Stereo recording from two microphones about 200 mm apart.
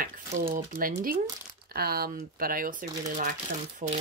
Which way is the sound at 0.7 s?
45° right (ahead or behind).